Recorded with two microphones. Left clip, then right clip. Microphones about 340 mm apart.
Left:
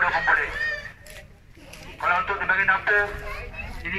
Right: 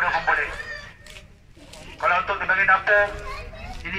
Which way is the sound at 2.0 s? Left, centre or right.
Centre.